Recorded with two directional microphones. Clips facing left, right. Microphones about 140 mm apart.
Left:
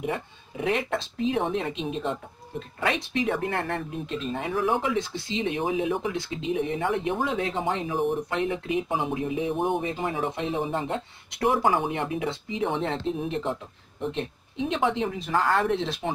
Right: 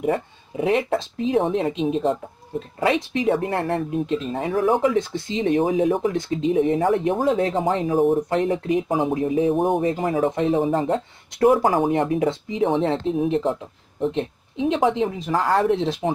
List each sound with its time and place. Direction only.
0.0 s speech: 40° right (ahead or behind)
14.7 s speech: 35° right (ahead or behind)